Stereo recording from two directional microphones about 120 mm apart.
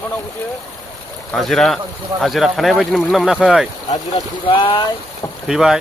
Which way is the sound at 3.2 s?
10° right (ahead or behind).